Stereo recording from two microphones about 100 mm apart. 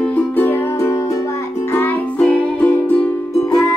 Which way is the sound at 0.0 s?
20° left (ahead or behind).